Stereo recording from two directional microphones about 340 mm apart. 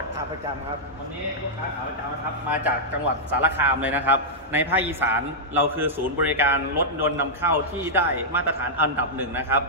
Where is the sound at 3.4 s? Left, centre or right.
Centre.